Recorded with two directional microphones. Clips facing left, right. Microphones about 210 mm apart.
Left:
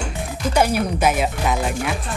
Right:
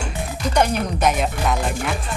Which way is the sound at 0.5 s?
5° left (ahead or behind).